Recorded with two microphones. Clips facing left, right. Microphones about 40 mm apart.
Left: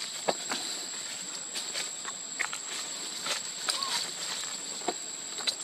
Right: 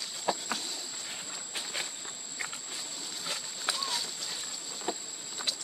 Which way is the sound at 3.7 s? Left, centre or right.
Right.